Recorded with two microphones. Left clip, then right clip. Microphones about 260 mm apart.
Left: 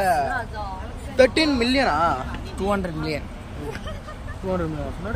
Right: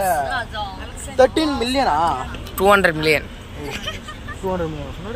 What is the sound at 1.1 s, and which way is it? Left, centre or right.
Speech, centre.